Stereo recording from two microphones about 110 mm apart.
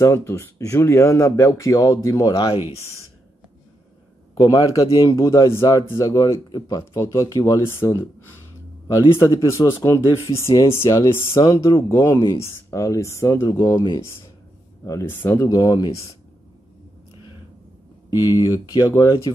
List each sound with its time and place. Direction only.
0.0 s speech: 25° left (ahead or behind)
4.4 s speech: 35° left (ahead or behind)
9.1 s speech: 30° left (ahead or behind)
13.5 s speech: 35° left (ahead or behind)
14.9 s speech: 25° left (ahead or behind)
15.5 s speech: 35° left (ahead or behind)
18.3 s speech: 35° left (ahead or behind)